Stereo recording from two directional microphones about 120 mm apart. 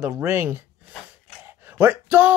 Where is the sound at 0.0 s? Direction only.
20° right (ahead or behind).